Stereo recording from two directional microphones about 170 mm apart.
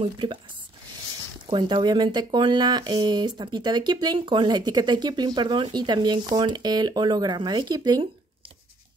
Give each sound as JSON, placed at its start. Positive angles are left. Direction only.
{"t": 0.0, "sound": "speech", "side_deg": -30}
{"t": 1.5, "sound": "speech", "side_deg": -25}